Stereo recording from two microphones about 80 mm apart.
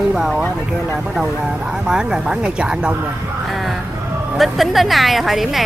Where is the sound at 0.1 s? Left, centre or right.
Centre.